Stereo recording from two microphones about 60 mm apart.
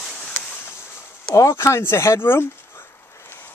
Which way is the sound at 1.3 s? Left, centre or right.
Left.